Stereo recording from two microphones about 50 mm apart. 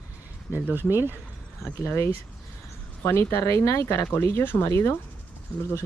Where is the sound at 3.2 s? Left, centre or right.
Left.